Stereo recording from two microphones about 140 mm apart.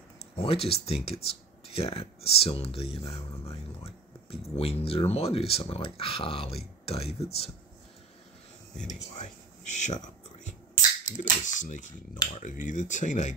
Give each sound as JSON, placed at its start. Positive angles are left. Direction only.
{"t": 0.4, "sound": "speech", "side_deg": 45}
{"t": 8.8, "sound": "speech", "side_deg": 60}